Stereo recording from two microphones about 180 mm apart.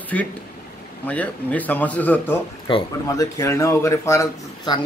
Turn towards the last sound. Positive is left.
turn(degrees=20)  # may be behind; listen again after turning